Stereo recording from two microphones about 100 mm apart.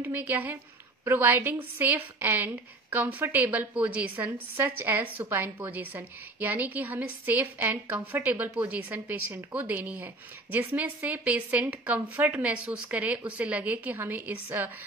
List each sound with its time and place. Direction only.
0.0 s a woman's voice: 20° right (ahead or behind)